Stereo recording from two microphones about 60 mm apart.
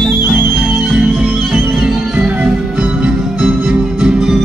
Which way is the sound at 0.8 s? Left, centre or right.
Centre.